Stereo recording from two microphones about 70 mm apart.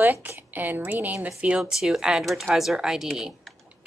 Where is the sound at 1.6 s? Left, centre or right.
Centre.